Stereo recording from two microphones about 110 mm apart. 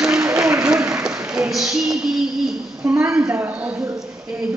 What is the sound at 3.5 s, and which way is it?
Speech, 15° right (ahead or behind).